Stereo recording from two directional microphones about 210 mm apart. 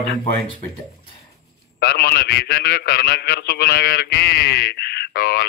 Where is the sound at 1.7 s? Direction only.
50° left (ahead or behind).